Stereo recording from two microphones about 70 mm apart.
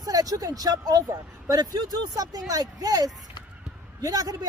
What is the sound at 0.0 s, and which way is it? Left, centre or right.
Speech, right.